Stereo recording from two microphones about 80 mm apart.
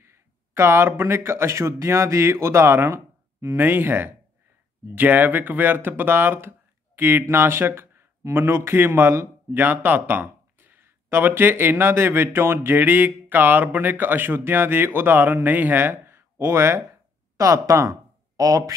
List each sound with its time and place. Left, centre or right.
0.0 s speech: right